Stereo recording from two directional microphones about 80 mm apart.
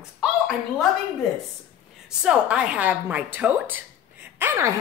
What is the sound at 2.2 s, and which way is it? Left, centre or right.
A woman's voice, centre.